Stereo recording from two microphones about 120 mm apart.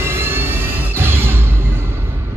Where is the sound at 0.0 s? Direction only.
20° right (ahead or behind).